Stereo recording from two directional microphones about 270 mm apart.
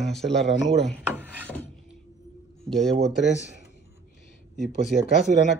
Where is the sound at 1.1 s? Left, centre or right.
Centre.